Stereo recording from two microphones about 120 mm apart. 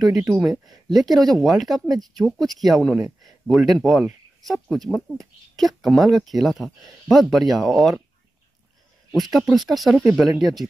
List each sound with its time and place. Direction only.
0.0 s speech: 30° right (ahead or behind)
0.4 s speech: centre (ahead or behind)
9.1 s speech: centre (ahead or behind)
9.9 s speech: 10° right (ahead or behind)
10.4 s speech: centre (ahead or behind)